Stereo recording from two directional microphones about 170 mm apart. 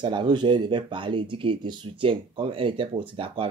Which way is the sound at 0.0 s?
25° right (ahead or behind).